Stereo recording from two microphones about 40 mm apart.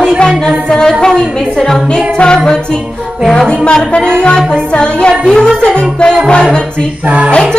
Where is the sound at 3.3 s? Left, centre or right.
Centre.